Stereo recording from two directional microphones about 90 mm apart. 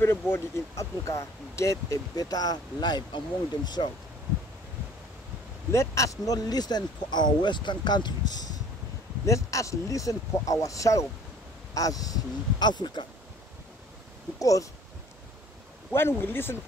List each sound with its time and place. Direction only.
0.0 s speech: 25° left (ahead or behind); by 3.9 s 50° left (ahead or behind)
5.7 s speech: 35° left (ahead or behind); by 8.5 s 50° left (ahead or behind)
9.2 s speech: 35° left (ahead or behind); by 13.0 s 55° left (ahead or behind)
14.4 s speech: 40° left (ahead or behind)
15.9 s speech: 25° left (ahead or behind)